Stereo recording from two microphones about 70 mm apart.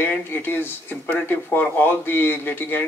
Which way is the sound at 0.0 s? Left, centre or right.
Left.